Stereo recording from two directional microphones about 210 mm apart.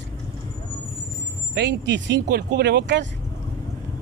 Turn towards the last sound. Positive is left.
turn(degrees=-55)  # may be behind; listen again after turning